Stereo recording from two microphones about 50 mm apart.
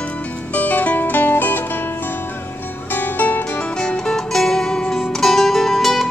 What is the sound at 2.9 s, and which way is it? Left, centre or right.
Music, left.